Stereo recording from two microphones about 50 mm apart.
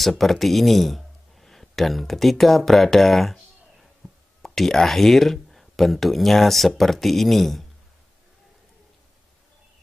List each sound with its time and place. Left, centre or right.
0.0 s speech: centre